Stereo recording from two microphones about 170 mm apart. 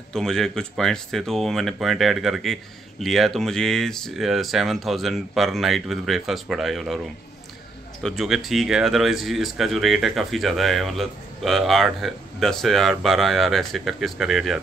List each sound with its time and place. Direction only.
0.1 s speech: 5° left (ahead or behind)
8.0 s speech: centre (ahead or behind)